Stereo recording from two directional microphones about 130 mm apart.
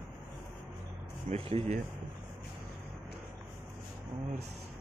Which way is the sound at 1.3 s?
50° right (ahead or behind).